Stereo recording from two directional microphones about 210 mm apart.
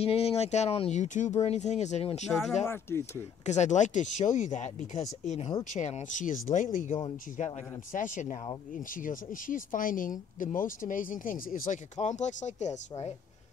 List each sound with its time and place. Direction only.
0.0 s speech: 30° left (ahead or behind)
2.6 s speech: 10° left (ahead or behind)
3.4 s speech: 35° left (ahead or behind)